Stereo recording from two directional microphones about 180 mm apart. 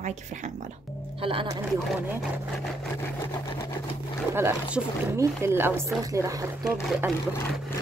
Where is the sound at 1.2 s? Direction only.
30° right (ahead or behind).